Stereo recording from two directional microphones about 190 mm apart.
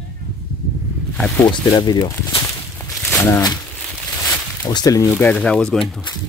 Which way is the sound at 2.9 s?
Centre (ahead or behind).